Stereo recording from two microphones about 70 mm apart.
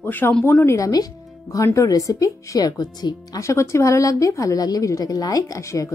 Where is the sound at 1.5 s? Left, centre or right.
Left.